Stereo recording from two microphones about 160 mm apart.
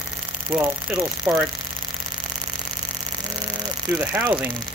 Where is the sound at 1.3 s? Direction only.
15° right (ahead or behind).